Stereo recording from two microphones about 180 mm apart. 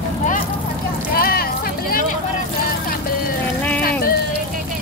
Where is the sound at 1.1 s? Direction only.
55° left (ahead or behind).